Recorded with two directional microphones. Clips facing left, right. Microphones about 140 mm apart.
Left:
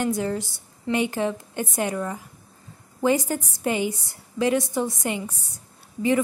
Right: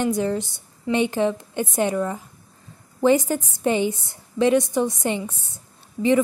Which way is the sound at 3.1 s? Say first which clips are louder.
Right 4 dB; 20° right (ahead or behind).